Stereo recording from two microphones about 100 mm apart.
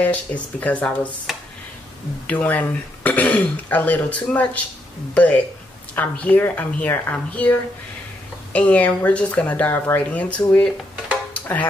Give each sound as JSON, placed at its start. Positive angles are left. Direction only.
{"t": 0.0, "sound": "speech", "side_deg": 15}
{"t": 1.3, "sound": "speech", "side_deg": 0}
{"t": 2.2, "sound": "speech", "side_deg": 15}
{"t": 8.5, "sound": "speech", "side_deg": 15}
{"t": 11.3, "sound": "music", "side_deg": 15}